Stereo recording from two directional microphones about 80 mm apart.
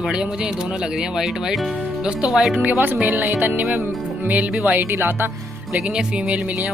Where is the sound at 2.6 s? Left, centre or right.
Right.